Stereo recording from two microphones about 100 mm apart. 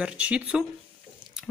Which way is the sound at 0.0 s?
10° right (ahead or behind).